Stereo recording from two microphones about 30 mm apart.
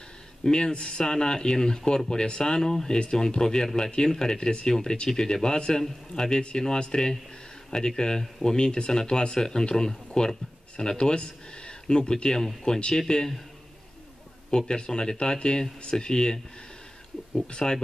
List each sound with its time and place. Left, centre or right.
0.4 s speech: left
14.7 s speech: left
17.5 s speech: left